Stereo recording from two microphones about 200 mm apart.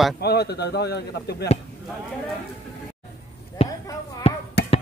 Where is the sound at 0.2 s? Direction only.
55° left (ahead or behind).